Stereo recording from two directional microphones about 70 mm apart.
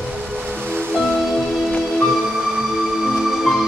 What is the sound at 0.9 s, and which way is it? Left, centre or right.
Music, centre.